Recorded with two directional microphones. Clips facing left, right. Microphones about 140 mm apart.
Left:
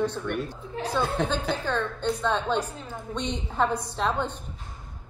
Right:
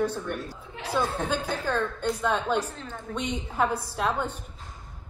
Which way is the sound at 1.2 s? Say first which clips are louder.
Left 1 dB; 10° right (ahead or behind).